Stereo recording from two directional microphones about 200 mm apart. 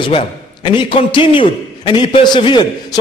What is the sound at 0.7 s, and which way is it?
A man's voice, 25° left (ahead or behind).